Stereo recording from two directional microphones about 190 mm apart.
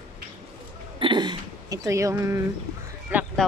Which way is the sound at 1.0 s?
25° right (ahead or behind).